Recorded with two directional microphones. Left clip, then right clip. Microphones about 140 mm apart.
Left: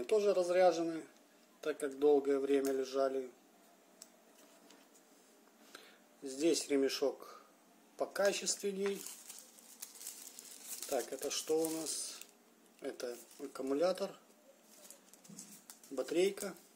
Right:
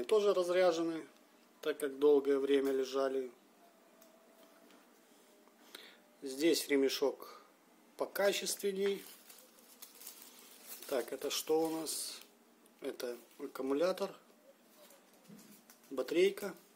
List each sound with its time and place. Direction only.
0.0 s a man's voice: 10° right (ahead or behind)
5.7 s a man's voice: 10° right (ahead or behind)
10.9 s a man's voice: 20° right (ahead or behind)
15.9 s a man's voice: 10° right (ahead or behind)